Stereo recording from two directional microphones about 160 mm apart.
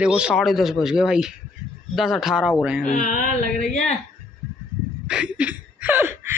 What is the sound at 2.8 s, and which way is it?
Speech, 50° left (ahead or behind).